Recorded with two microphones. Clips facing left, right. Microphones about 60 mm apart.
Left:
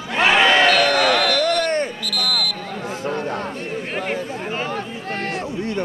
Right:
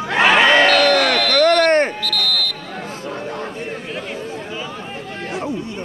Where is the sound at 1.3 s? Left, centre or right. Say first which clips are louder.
Right 6 dB; right.